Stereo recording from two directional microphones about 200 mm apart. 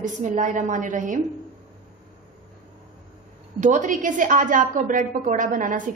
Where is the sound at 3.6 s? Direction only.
40° right (ahead or behind).